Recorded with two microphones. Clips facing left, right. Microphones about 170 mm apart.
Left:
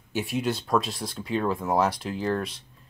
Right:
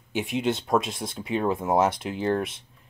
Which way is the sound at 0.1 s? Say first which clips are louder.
Right 1 dB; 20° right (ahead or behind).